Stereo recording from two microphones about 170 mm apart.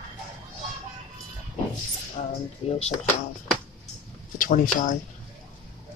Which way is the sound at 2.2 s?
35° left (ahead or behind).